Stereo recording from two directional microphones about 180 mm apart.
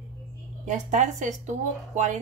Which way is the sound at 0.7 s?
40° right (ahead or behind).